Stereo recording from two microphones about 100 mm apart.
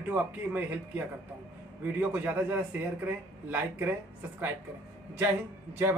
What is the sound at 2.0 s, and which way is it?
Speech, 15° right (ahead or behind).